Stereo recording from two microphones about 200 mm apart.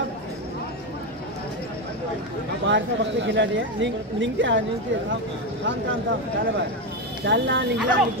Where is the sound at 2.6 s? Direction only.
65° right (ahead or behind).